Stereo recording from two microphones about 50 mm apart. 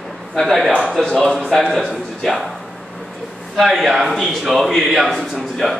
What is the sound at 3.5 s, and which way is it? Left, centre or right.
Speech, centre.